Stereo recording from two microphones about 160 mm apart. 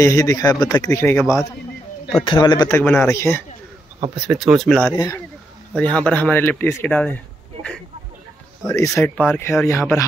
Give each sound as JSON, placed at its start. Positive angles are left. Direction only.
{"t": 0.0, "sound": "speech", "side_deg": 20}
{"t": 2.2, "sound": "speech", "side_deg": 30}
{"t": 2.8, "sound": "speech", "side_deg": 10}
{"t": 4.3, "sound": "speech", "side_deg": -5}
{"t": 4.9, "sound": "speech", "side_deg": 25}
{"t": 5.8, "sound": "speech", "side_deg": 10}
{"t": 8.6, "sound": "speech", "side_deg": 20}